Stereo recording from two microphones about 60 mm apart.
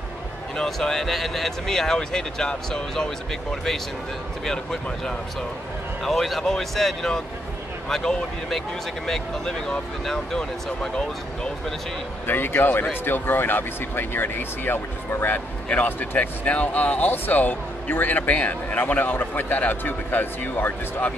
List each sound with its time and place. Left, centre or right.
0.6 s speech: centre
4.5 s speech: centre
12.3 s speech: left